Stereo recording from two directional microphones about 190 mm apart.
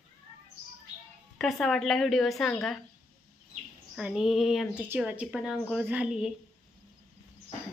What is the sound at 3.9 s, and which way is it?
A woman's voice, 5° right (ahead or behind).